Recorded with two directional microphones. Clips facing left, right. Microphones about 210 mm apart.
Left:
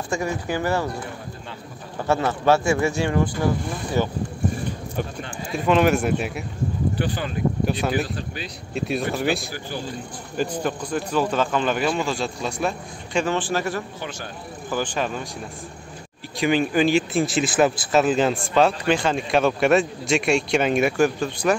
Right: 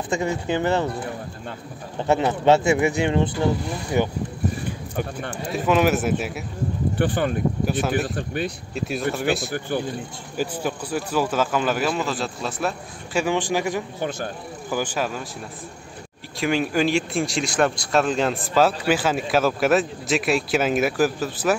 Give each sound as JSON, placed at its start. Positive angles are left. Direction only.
{"t": 0.1, "sound": "speech", "side_deg": -20}
{"t": 2.0, "sound": "speech", "side_deg": -20}
{"t": 5.5, "sound": "speech", "side_deg": -5}
{"t": 7.0, "sound": "speech", "side_deg": -55}
{"t": 8.7, "sound": "speech", "side_deg": 0}
{"t": 9.5, "sound": "speech", "side_deg": -55}
{"t": 10.3, "sound": "speech", "side_deg": -5}
{"t": 13.9, "sound": "speech", "side_deg": -45}
{"t": 14.7, "sound": "speech", "side_deg": -5}
{"t": 16.3, "sound": "speech", "side_deg": 0}